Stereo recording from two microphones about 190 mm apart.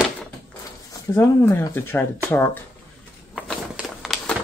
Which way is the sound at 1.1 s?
10° left (ahead or behind).